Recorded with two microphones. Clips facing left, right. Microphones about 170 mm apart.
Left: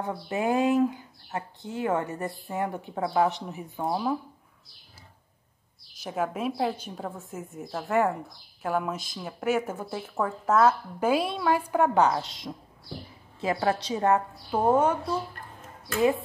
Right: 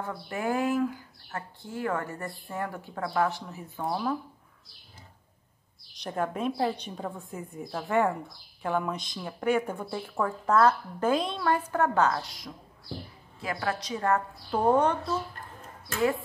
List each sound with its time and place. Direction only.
0.0 s speech: 20° left (ahead or behind)
5.9 s speech: 5° left (ahead or behind); by 14.2 s 20° left (ahead or behind)
14.5 s speech: 5° left (ahead or behind)